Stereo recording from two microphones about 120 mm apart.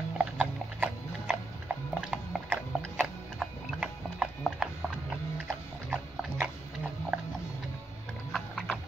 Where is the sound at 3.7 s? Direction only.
5° right (ahead or behind).